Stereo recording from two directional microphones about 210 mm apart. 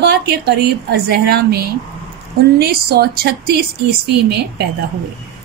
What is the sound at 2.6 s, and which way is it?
A woman's voice, 45° right (ahead or behind).